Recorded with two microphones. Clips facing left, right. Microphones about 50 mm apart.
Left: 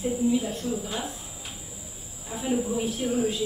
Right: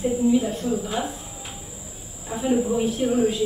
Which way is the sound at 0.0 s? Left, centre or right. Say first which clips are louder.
Right 5 dB; centre.